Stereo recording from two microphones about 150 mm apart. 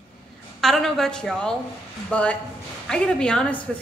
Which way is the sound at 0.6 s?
Centre (ahead or behind).